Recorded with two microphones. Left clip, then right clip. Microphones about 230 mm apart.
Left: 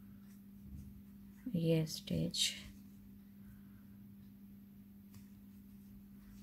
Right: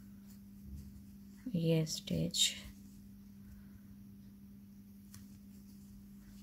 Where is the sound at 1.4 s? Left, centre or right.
Centre.